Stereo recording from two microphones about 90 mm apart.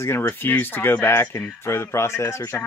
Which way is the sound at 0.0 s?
25° left (ahead or behind).